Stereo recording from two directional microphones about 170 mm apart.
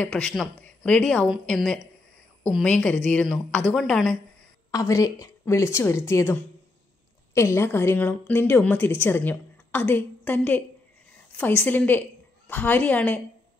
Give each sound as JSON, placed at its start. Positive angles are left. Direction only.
{"t": 0.0, "sound": "a woman's voice", "side_deg": 5}
{"t": 4.6, "sound": "a woman's voice", "side_deg": 20}
{"t": 7.3, "sound": "a woman's voice", "side_deg": 15}